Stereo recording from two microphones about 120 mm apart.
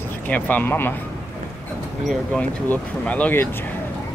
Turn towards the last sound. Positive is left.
turn(degrees=10)  # may be behind; listen again after turning